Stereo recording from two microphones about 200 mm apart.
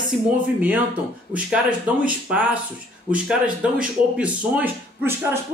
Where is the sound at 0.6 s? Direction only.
5° right (ahead or behind).